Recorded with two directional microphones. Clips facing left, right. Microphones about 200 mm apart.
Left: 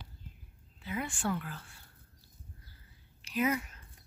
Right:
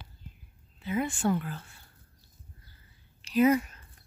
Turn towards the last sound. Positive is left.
turn(degrees=-35)  # may be behind; listen again after turning